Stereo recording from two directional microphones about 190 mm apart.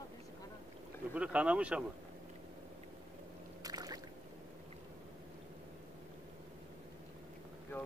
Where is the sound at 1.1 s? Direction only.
5° right (ahead or behind).